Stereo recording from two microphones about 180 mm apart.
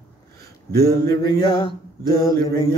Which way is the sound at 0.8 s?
20° left (ahead or behind).